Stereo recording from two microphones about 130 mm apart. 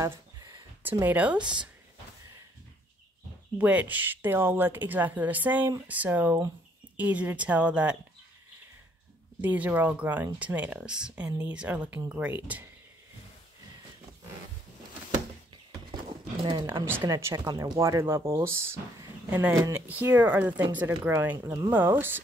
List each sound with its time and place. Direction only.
0.0 s a sound: 25° right (ahead or behind)
0.8 s speech: 15° right (ahead or behind)
3.5 s speech: 10° right (ahead or behind)
9.4 s speech: 15° right (ahead or behind)
15.9 s a sound: 35° right (ahead or behind)
17.0 s speech: 30° right (ahead or behind); by 22.2 s 15° right (ahead or behind)